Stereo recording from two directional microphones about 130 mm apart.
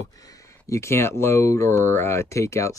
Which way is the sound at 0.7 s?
20° left (ahead or behind).